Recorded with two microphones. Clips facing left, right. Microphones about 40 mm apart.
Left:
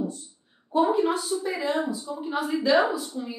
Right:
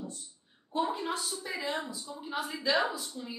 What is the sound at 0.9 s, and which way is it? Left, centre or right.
A woman's voice, centre.